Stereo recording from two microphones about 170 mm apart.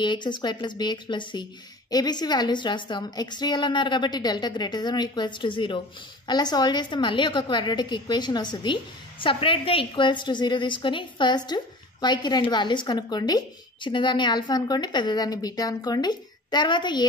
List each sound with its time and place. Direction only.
0.0 s a woman's voice: 25° left (ahead or behind)